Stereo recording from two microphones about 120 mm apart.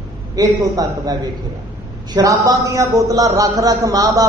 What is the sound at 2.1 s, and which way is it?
A man's voice, 30° right (ahead or behind).